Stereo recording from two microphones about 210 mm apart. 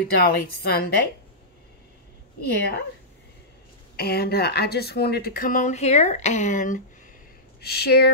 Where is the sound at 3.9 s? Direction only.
50° left (ahead or behind).